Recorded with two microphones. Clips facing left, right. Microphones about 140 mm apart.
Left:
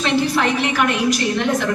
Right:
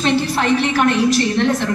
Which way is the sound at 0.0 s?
35° right (ahead or behind).